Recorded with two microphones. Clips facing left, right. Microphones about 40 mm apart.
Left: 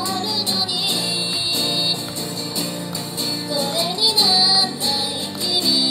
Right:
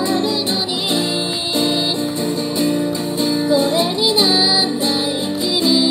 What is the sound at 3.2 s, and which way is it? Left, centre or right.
Music, centre.